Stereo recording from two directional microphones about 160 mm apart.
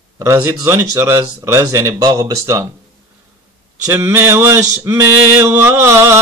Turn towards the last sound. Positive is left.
turn(degrees=-15)  # may be behind; listen again after turning